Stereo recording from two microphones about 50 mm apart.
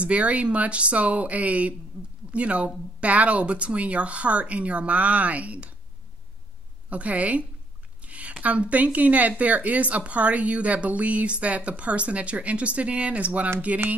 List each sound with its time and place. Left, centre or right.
0.0 s a woman's voice: right
6.9 s a woman's voice: right